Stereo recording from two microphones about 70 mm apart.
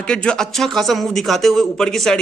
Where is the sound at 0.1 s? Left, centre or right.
Centre.